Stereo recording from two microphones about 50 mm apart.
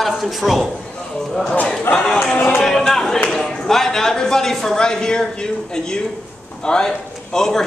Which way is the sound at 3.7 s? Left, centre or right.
Centre.